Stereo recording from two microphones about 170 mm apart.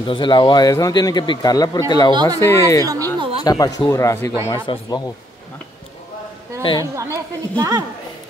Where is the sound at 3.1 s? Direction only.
35° right (ahead or behind).